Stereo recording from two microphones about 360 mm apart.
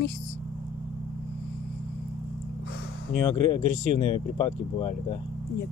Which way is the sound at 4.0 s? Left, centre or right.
Centre.